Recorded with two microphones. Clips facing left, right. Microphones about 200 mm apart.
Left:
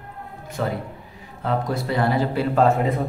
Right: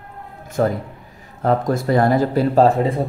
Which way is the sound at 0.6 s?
45° right (ahead or behind).